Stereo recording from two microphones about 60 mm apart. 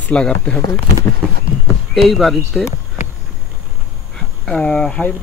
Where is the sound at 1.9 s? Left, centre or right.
Centre.